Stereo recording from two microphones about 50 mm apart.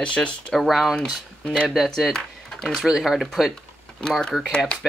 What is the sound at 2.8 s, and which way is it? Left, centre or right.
Speech, centre.